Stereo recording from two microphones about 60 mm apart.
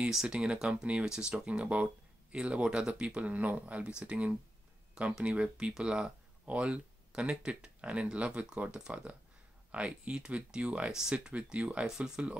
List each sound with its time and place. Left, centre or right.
0.1 s speech: centre